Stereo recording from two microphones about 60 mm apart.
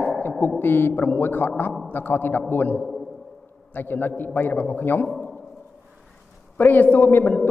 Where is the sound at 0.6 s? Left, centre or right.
Left.